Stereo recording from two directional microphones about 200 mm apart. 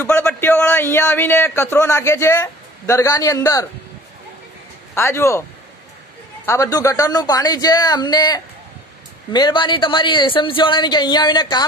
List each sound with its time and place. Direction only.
0.0 s a man's voice: 10° left (ahead or behind)
4.9 s speech: 15° left (ahead or behind)
6.4 s speech: 15° left (ahead or behind)